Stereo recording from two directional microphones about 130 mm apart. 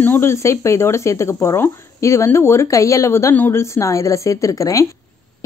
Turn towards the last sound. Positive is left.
turn(degrees=25)  # may be behind; listen again after turning